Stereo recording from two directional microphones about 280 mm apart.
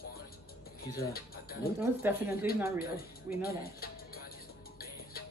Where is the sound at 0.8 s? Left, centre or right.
Left.